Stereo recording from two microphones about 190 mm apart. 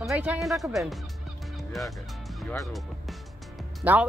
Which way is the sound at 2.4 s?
15° left (ahead or behind).